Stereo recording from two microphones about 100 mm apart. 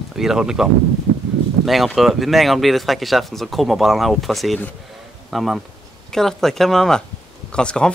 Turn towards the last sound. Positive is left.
turn(degrees=10)  # may be behind; listen again after turning